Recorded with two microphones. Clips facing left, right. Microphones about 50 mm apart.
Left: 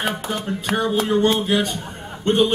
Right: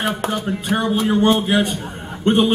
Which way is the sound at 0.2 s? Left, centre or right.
Right.